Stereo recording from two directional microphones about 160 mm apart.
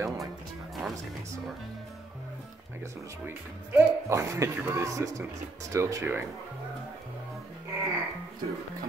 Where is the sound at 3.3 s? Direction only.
15° right (ahead or behind).